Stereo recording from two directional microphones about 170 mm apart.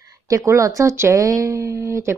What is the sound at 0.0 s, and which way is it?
A woman's voice, 20° right (ahead or behind).